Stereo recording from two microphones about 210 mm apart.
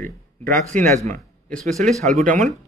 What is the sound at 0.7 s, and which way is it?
Speech, 35° right (ahead or behind).